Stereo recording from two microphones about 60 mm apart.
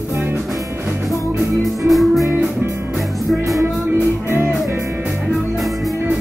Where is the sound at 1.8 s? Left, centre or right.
Centre.